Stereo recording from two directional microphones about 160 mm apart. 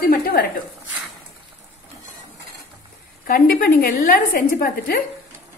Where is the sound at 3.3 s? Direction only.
65° left (ahead or behind).